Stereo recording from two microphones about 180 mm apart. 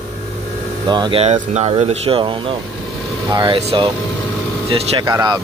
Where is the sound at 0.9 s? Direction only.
30° right (ahead or behind).